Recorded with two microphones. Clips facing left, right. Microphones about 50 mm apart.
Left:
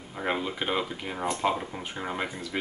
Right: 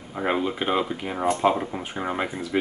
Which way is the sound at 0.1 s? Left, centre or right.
Centre.